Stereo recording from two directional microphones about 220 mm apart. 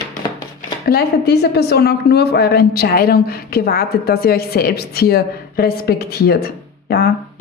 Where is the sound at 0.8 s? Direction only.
45° left (ahead or behind).